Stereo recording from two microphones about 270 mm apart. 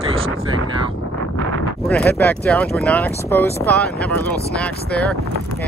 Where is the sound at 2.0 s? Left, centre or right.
Centre.